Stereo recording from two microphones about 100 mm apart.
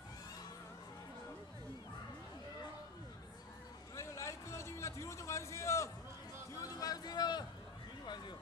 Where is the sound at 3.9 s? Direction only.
30° left (ahead or behind).